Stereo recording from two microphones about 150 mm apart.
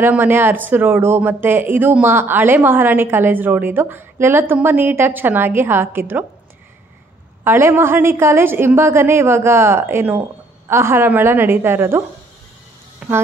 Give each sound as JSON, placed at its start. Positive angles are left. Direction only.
{"t": 0.0, "sound": "speech", "side_deg": -15}
{"t": 7.4, "sound": "speech", "side_deg": -15}
{"t": 13.0, "sound": "speech", "side_deg": -5}